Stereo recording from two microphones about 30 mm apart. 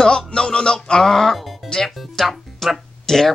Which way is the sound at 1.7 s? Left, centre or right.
Left.